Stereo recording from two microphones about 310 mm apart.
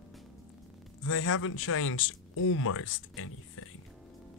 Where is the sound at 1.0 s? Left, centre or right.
Left.